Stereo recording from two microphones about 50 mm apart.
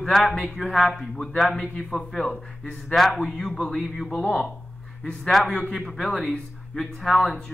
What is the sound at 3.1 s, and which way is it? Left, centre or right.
Speech, left.